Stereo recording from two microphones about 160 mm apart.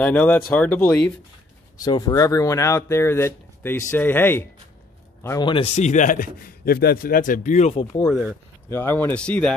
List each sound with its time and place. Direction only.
0.0 s speech: 10° left (ahead or behind)
1.8 s speech: 25° left (ahead or behind)
5.4 s speech: 30° left (ahead or behind)
5.8 s a man's voice: 50° left (ahead or behind)
8.1 s speech: 5° right (ahead or behind)
8.6 s speech: 15° left (ahead or behind)